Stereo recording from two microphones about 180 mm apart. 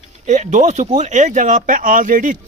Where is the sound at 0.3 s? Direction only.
45° right (ahead or behind).